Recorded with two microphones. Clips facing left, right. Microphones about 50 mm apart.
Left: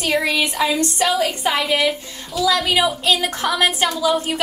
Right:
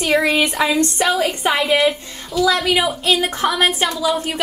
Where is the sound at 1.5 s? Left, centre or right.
Centre.